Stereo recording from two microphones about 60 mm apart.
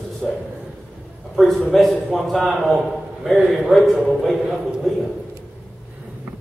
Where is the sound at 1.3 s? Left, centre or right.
Centre.